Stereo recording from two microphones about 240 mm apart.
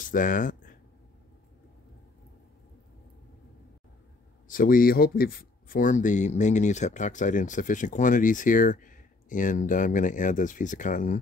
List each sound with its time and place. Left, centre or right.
0.0 s speech: left
4.5 s speech: left